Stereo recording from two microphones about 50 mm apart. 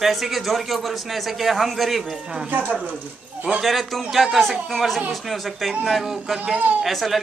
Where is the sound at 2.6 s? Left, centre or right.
Right.